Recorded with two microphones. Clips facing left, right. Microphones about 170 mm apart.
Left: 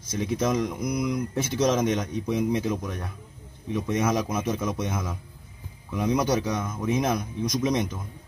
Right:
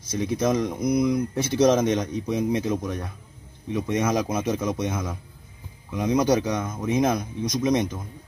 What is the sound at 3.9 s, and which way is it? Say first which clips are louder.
Speech: right 2 dB; 35° right (ahead or behind).